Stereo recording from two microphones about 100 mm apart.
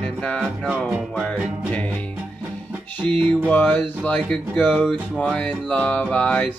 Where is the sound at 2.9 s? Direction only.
15° left (ahead or behind).